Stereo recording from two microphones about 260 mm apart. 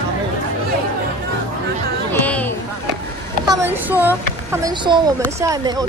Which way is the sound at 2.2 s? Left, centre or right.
Centre.